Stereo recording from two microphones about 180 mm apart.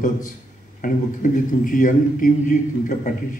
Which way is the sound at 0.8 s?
45° left (ahead or behind).